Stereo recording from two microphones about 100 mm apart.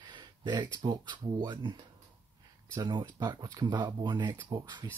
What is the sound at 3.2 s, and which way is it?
Speech, 45° right (ahead or behind).